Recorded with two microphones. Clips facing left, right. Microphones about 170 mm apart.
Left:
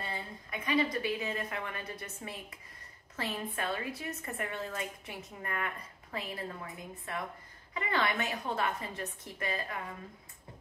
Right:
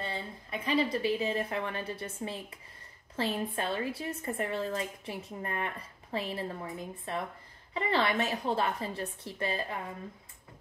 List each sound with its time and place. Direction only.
0.0 s a woman's voice: 30° right (ahead or behind)